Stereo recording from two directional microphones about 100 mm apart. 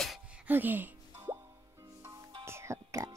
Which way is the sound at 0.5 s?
20° right (ahead or behind).